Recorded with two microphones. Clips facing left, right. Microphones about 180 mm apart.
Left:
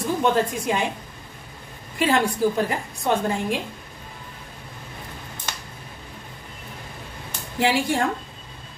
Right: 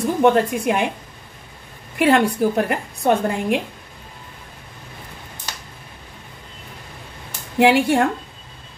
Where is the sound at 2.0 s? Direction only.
65° right (ahead or behind).